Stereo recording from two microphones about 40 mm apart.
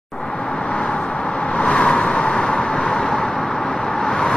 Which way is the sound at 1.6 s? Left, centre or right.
Left.